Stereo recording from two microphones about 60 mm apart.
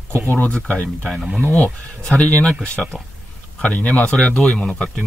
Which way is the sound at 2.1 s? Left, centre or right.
Left.